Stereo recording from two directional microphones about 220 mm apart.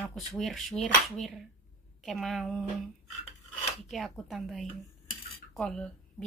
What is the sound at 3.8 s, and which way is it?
Speech, centre (ahead or behind).